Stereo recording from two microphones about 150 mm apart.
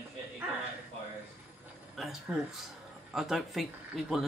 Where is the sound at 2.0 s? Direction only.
5° right (ahead or behind).